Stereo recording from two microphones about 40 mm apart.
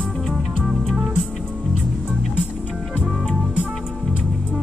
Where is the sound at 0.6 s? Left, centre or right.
Centre.